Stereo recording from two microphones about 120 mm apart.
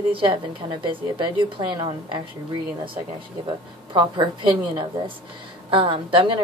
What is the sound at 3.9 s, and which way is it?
A woman's voice, 40° right (ahead or behind).